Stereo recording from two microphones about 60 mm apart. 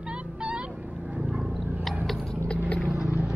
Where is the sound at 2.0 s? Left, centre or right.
Centre.